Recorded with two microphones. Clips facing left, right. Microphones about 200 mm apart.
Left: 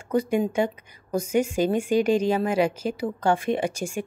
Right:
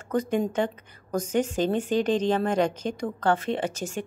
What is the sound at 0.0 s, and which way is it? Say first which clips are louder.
Speech: left 2 dB; 10° left (ahead or behind).